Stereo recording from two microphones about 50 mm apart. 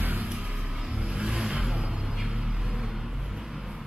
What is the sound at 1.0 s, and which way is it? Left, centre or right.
Vehicle, centre.